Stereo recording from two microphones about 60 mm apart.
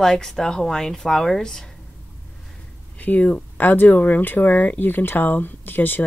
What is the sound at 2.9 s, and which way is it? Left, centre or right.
Speech, left.